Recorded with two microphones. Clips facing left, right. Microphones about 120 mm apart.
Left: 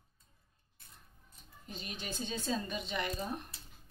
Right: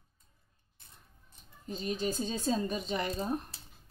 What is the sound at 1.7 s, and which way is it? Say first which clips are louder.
A woman's voice: right 10 dB; 35° right (ahead or behind).